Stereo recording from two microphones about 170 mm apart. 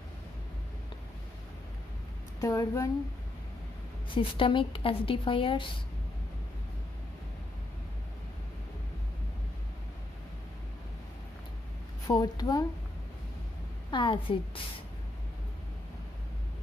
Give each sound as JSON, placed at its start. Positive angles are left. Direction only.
{"t": 2.4, "sound": "a woman's voice", "side_deg": 20}
{"t": 4.1, "sound": "speech", "side_deg": 30}
{"t": 12.1, "sound": "a woman's voice", "side_deg": 20}
{"t": 13.8, "sound": "a woman's voice", "side_deg": 30}